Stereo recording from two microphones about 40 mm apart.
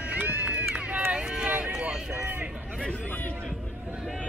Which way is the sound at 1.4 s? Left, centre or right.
Right.